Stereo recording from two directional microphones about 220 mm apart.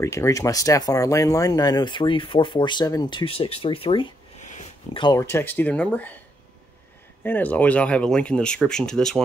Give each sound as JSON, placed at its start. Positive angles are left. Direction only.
{"t": 0.0, "sound": "speech", "side_deg": 15}
{"t": 5.0, "sound": "speech", "side_deg": 15}
{"t": 7.2, "sound": "speech", "side_deg": 10}